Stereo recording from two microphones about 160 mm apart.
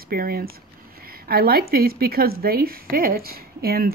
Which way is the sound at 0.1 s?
70° right (ahead or behind).